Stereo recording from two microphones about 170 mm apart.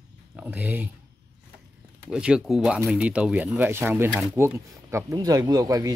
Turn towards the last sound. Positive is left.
turn(degrees=-20)  # may be behind; listen again after turning